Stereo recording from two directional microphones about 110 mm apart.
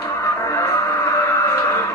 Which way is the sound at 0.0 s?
25° left (ahead or behind).